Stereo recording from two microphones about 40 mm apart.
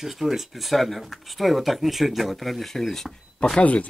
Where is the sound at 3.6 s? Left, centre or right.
Left.